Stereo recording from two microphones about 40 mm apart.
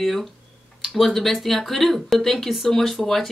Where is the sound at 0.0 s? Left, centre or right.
Centre.